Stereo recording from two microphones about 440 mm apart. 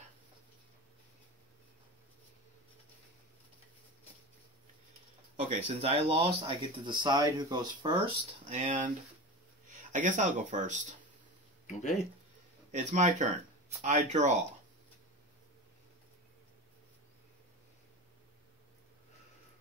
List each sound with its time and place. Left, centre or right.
5.3 s speech: centre
11.6 s speech: centre
12.7 s speech: centre